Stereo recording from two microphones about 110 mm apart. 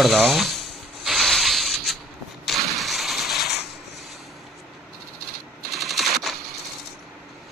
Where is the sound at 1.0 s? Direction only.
Centre (ahead or behind).